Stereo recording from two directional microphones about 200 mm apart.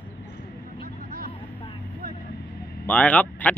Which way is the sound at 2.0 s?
50° right (ahead or behind).